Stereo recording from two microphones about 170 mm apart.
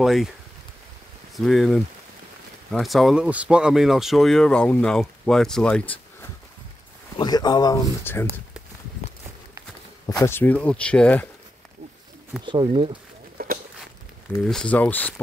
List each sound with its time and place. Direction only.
0.0 s speech: centre (ahead or behind)
1.3 s speech: centre (ahead or behind)
7.2 s speech: 25° left (ahead or behind)
10.2 s speech: 10° left (ahead or behind)
12.4 s speech: 30° right (ahead or behind)
13.4 s walk: 60° right (ahead or behind)
14.4 s speech: 5° left (ahead or behind)